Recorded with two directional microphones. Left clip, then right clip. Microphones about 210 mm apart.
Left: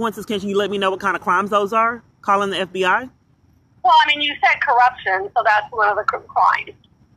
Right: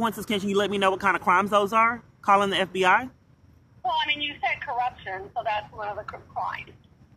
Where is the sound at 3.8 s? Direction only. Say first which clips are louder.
Left 12 dB; 50° left (ahead or behind).